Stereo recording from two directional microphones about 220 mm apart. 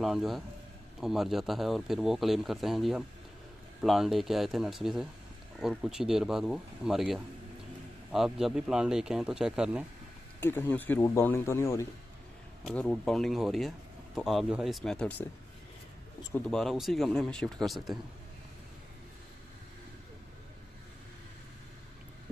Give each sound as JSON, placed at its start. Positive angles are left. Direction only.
{"t": 0.0, "sound": "speech", "side_deg": 0}
{"t": 10.4, "sound": "speech", "side_deg": 10}
{"t": 16.2, "sound": "speech", "side_deg": 15}
{"t": 16.4, "sound": "speech", "side_deg": 0}